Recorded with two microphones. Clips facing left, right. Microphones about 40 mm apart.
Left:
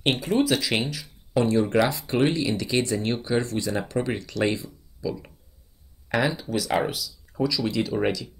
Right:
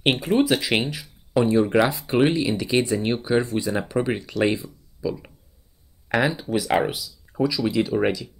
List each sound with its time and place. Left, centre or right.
0.0 s speech: centre